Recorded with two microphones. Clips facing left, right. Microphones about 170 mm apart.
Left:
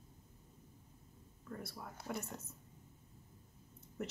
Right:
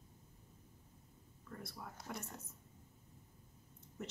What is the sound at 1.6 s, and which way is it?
Speech, 5° left (ahead or behind).